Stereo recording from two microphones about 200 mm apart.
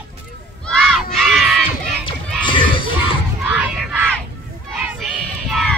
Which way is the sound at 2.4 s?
25° left (ahead or behind).